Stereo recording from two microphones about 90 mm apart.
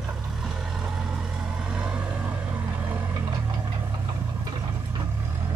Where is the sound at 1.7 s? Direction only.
15° right (ahead or behind).